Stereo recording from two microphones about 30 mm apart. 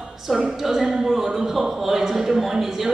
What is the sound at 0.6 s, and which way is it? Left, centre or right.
Speech, centre.